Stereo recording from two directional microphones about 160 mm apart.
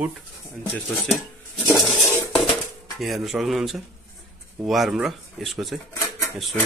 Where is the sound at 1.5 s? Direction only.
Centre (ahead or behind).